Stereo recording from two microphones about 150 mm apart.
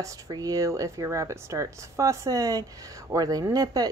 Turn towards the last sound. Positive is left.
turn(degrees=-25)  # may be behind; listen again after turning